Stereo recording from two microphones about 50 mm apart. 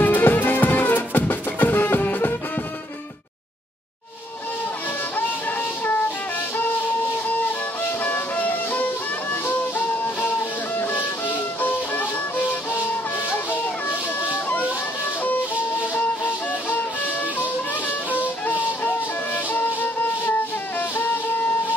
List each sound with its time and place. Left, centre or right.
0.0 s music: left
5.1 s music: left
7.8 s music: left
13.5 s a sound: left
15.8 s music: left